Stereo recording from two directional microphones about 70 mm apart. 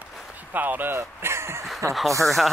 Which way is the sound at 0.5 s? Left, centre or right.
Right.